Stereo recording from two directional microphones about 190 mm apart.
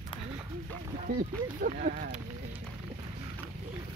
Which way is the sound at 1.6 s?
45° right (ahead or behind).